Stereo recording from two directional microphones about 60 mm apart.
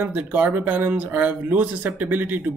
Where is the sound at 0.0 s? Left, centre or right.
Right.